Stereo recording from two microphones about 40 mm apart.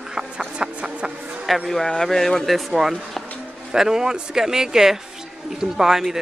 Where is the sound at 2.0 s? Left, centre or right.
Centre.